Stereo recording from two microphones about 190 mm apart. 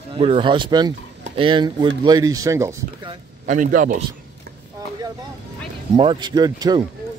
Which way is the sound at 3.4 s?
45° right (ahead or behind).